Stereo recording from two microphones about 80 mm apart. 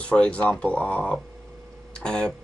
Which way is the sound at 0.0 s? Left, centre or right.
Centre.